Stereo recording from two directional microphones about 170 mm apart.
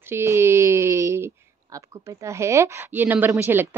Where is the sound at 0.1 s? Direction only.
15° right (ahead or behind).